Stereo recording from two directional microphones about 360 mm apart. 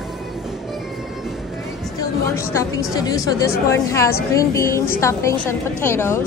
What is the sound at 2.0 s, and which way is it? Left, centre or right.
A woman's voice, centre.